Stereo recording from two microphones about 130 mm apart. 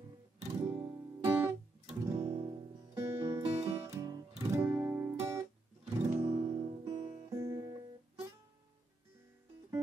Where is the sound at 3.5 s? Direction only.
55° right (ahead or behind).